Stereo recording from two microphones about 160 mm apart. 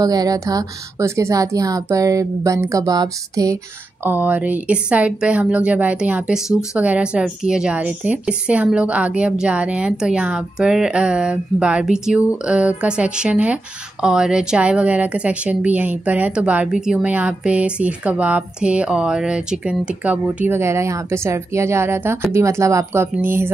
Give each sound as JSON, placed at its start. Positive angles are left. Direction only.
{"t": 0.0, "sound": "speech", "side_deg": -25}
{"t": 4.0, "sound": "speech", "side_deg": -10}